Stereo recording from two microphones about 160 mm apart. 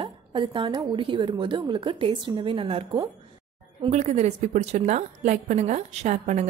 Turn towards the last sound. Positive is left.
turn(degrees=-45)  # may be behind; listen again after turning